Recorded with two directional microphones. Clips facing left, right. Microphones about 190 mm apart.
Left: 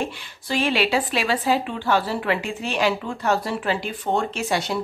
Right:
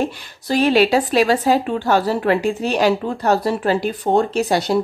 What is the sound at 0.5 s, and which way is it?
A woman's voice, 40° right (ahead or behind).